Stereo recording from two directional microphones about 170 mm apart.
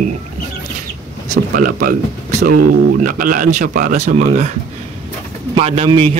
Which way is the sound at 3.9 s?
40° right (ahead or behind).